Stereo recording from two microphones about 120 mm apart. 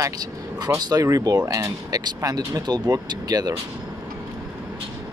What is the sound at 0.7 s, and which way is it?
Speech, 35° right (ahead or behind).